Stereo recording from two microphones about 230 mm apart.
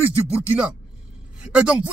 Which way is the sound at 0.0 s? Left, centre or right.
Centre.